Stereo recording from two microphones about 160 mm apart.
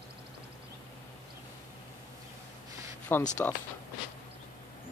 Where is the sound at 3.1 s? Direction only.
15° left (ahead or behind).